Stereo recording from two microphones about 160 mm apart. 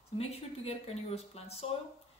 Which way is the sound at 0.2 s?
40° left (ahead or behind).